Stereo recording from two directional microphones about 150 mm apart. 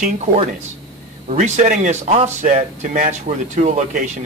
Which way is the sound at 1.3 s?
55° right (ahead or behind).